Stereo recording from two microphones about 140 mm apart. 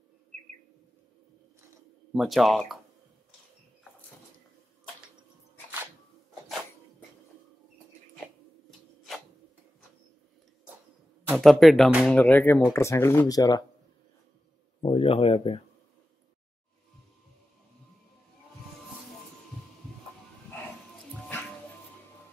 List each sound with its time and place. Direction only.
2.1 s speech: centre (ahead or behind)
8.6 s rub: centre (ahead or behind)
11.3 s speech: centre (ahead or behind); by 13.7 s 30° left (ahead or behind)
14.8 s a sound: 45° left (ahead or behind)